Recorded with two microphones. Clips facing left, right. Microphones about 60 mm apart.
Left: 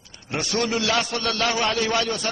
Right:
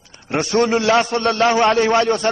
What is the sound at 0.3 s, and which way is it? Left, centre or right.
A man's voice, right.